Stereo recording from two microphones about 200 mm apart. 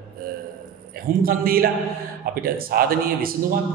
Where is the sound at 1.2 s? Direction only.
45° right (ahead or behind).